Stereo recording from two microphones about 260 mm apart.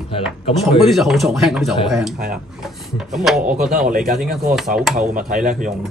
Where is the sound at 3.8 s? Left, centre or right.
Right.